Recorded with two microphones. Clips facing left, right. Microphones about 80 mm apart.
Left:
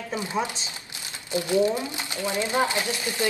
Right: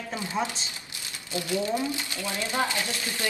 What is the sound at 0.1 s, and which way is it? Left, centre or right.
Speech, left.